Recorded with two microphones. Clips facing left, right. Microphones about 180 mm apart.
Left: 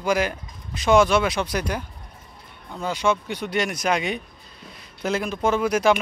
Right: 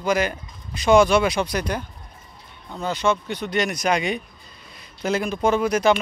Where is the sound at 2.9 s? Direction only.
10° left (ahead or behind).